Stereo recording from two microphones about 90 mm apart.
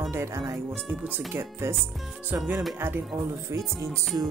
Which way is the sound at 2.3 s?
20° right (ahead or behind).